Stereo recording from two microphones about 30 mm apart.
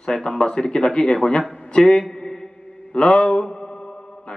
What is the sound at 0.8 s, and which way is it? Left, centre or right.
A man's voice, left.